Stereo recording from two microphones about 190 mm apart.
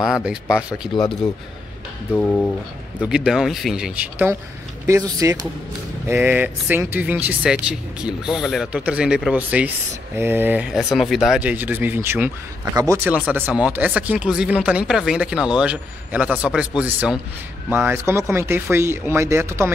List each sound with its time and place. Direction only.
0.0 s speech: 5° right (ahead or behind)
2.1 s speech: 10° left (ahead or behind)
3.1 s speech: 5° right (ahead or behind)
5.2 s speech: 20° right (ahead or behind)